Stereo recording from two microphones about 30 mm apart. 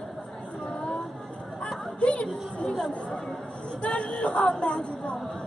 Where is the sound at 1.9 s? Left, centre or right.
Left.